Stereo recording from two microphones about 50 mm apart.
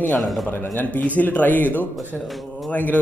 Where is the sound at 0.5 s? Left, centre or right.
Left.